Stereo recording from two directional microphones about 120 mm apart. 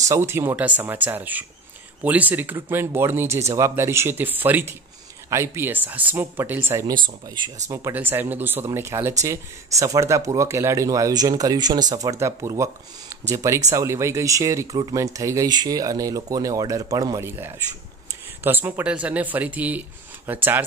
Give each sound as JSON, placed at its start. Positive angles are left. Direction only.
{"t": 0.0, "sound": "speech", "side_deg": -25}
{"t": 6.9, "sound": "speech", "side_deg": -35}
{"t": 7.6, "sound": "speech", "side_deg": -25}
{"t": 7.9, "sound": "speech", "side_deg": -15}
{"t": 14.8, "sound": "speech", "side_deg": -35}